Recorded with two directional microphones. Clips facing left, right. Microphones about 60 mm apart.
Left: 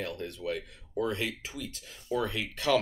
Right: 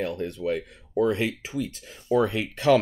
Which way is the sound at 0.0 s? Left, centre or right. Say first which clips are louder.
Right 7 dB; centre.